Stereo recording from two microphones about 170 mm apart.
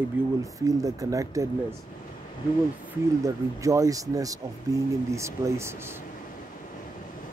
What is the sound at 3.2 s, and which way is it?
Speech, 20° right (ahead or behind).